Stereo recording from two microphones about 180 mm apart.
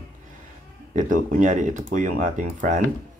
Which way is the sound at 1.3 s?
45° right (ahead or behind).